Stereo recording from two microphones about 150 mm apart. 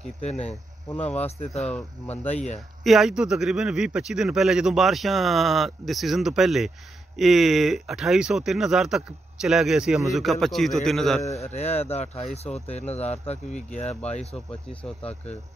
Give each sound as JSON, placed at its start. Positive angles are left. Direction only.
{"t": 0.8, "sound": "speech", "side_deg": 10}
{"t": 2.2, "sound": "speech", "side_deg": 50}
{"t": 2.8, "sound": "speech", "side_deg": 0}
{"t": 11.2, "sound": "speech", "side_deg": 45}